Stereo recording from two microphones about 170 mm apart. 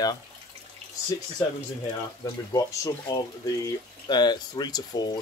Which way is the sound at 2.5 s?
25° left (ahead or behind).